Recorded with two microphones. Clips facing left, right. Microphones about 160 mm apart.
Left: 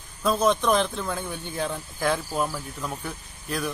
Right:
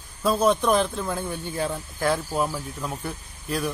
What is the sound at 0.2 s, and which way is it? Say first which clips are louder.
A man's voice: right 1 dB; 10° right (ahead or behind).